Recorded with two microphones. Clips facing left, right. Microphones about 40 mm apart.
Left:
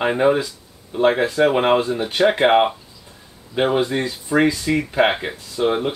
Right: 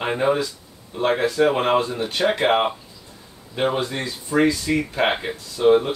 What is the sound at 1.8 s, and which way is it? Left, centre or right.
Speech, centre.